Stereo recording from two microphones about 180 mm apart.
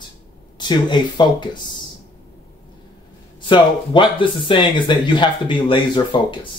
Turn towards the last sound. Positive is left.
turn(degrees=25)  # may be behind; listen again after turning